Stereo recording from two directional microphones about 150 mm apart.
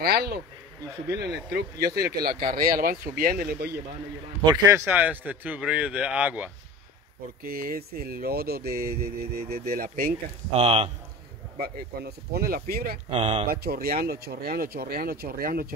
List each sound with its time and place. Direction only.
0.0 s speech: 90° right
4.5 s a man's voice: 20° right (ahead or behind)
7.4 s speech: 80° right
10.5 s a man's voice: 40° right (ahead or behind)
11.6 s speech: 90° right
13.1 s a man's voice: 40° right (ahead or behind)
13.5 s speech: 85° right